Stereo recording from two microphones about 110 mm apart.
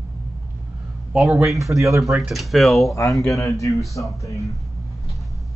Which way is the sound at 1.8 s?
30° right (ahead or behind).